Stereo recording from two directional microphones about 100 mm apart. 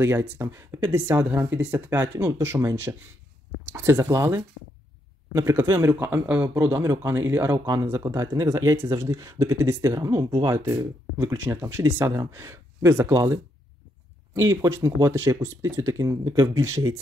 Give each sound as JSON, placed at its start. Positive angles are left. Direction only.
{"t": 0.0, "sound": "speech", "side_deg": -25}
{"t": 7.5, "sound": "speech", "side_deg": -35}
{"t": 11.1, "sound": "speech", "side_deg": -20}